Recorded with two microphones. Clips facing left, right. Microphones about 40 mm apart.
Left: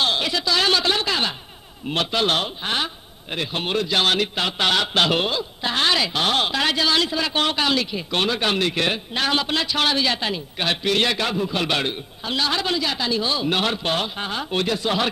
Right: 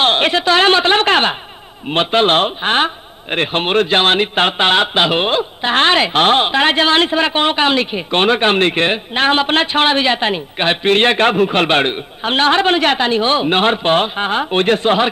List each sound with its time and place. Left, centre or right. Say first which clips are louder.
0.0 s a woman's voice: right 8 dB; right
5.3 s a woman's voice: right 9 dB; right